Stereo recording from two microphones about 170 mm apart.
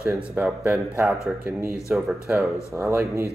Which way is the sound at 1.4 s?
15° right (ahead or behind).